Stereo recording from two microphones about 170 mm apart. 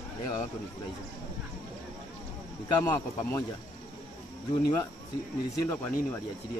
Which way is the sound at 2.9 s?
15° left (ahead or behind).